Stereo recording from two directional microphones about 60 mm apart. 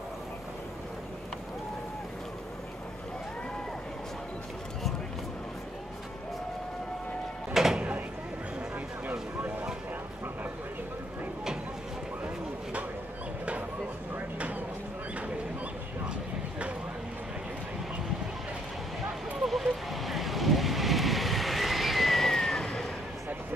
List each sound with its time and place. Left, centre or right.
7.5 s a sound: centre
14.1 s vehicle: right
19.4 s vehicle: centre